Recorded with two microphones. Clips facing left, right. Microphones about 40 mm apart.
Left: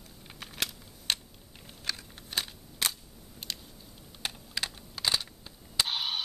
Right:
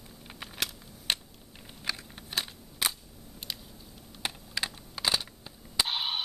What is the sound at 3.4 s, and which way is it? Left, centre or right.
Biting, centre.